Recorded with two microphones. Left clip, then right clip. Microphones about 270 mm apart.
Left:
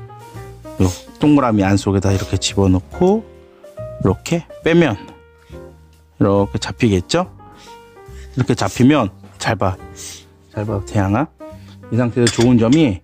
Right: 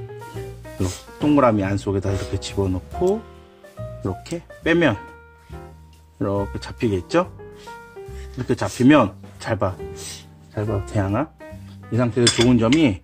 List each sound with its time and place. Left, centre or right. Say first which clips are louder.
0.7 s speech: left 8 dB; left
6.1 s speech: left 9 dB; left
8.4 s speech: left 5 dB; left